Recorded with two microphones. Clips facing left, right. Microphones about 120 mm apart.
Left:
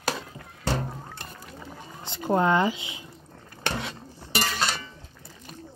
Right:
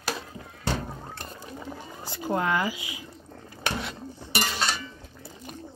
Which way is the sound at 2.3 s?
25° left (ahead or behind).